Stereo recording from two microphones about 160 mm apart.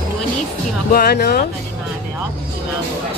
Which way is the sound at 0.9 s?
75° left (ahead or behind).